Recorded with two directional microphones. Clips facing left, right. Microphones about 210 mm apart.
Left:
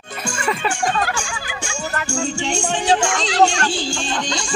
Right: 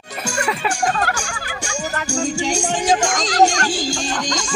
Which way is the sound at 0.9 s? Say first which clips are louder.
Even; 45° right (ahead or behind).